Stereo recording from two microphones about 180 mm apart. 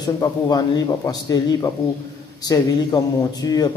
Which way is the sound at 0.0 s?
20° left (ahead or behind).